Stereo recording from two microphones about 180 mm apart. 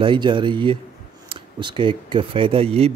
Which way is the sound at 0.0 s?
25° right (ahead or behind).